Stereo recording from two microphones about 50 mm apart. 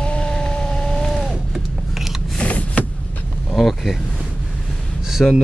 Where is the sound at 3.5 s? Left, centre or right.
Centre.